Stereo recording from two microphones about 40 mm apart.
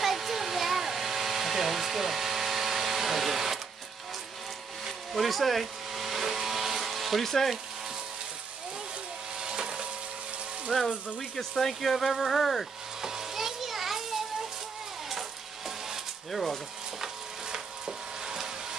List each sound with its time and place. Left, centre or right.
0.0 s hair dryer: centre
4.8 s vehicle: centre
7.2 s speech: centre
9.4 s wood: centre
10.7 s speech: centre
11.1 s speech: centre
13.0 s a sound: centre
15.0 s mechanisms: centre
17.5 s wood: centre